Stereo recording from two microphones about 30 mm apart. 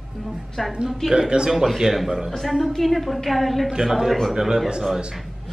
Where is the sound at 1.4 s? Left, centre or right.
Centre.